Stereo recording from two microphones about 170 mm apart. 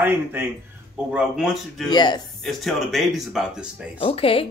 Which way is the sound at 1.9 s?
25° left (ahead or behind).